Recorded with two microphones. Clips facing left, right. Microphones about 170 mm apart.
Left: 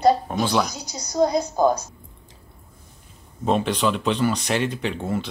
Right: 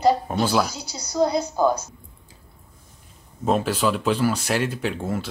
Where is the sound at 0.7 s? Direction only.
15° left (ahead or behind).